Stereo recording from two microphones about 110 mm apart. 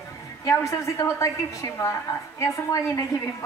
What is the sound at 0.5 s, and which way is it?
A woman's voice, 30° left (ahead or behind).